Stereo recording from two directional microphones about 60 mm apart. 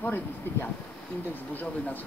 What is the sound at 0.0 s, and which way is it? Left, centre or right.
Speech, left.